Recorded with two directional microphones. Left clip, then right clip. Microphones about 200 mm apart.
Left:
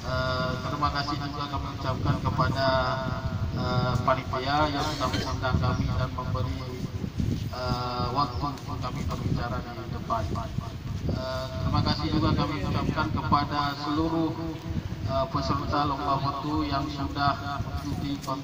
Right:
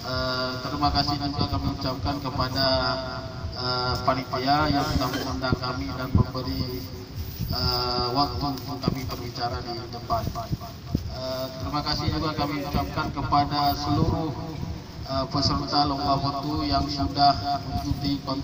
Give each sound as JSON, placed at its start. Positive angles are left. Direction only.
{"t": 0.1, "sound": "speech", "side_deg": -45}
{"t": 5.4, "sound": "speech", "side_deg": -50}
{"t": 7.5, "sound": "speech", "side_deg": -45}
{"t": 11.2, "sound": "speech", "side_deg": -50}
{"t": 15.0, "sound": "speech", "side_deg": -50}